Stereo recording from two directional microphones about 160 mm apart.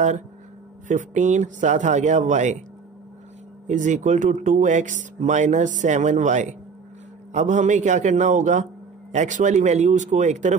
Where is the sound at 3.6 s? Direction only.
50° right (ahead or behind).